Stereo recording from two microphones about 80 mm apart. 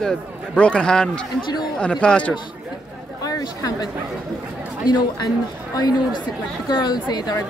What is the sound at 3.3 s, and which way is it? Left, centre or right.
Speech, left.